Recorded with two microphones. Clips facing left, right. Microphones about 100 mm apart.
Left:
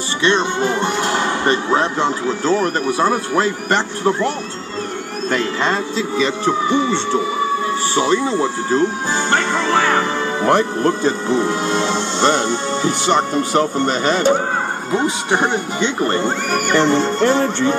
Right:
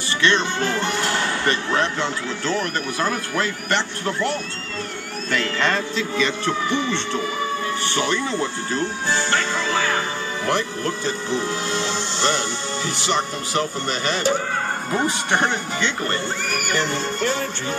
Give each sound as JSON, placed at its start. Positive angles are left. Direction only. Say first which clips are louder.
{"t": 0.2, "sound": "speech", "louder": "left 4 dB", "side_deg": 15}
{"t": 2.0, "sound": "speech", "louder": "left 7 dB", "side_deg": 40}
{"t": 5.4, "sound": "speech", "louder": "even", "side_deg": 20}
{"t": 9.3, "sound": "music", "louder": "left 6 dB", "side_deg": 55}
{"t": 10.4, "sound": "speech", "louder": "left 8 dB", "side_deg": 40}
{"t": 15.0, "sound": "speech", "louder": "left 4 dB", "side_deg": 5}
{"t": 16.8, "sound": "speech", "louder": "left 9 dB", "side_deg": 25}